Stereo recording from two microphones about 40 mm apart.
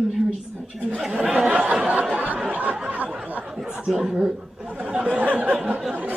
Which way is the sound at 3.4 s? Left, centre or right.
Centre.